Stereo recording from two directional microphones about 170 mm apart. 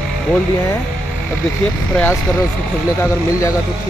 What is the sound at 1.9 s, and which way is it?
Speech, 10° left (ahead or behind).